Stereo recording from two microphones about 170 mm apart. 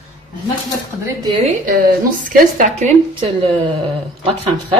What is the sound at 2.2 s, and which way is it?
Speech, 50° right (ahead or behind).